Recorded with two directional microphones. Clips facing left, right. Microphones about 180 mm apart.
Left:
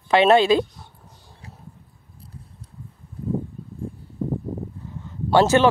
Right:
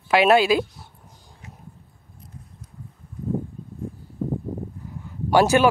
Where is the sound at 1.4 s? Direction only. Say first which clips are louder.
Left 1 dB; 35° left (ahead or behind).